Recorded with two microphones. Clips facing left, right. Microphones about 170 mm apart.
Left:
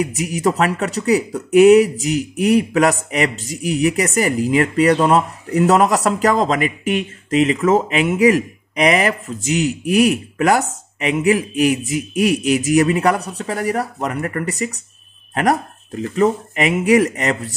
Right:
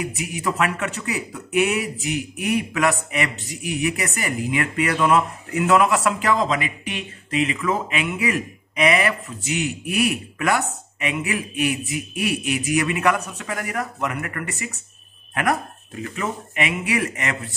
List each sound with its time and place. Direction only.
0.0 s speech: 40° left (ahead or behind)
16.0 s speech: 35° left (ahead or behind)